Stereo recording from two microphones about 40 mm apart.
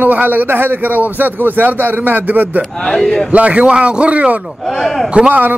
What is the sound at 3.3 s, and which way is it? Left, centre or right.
A man's voice, right.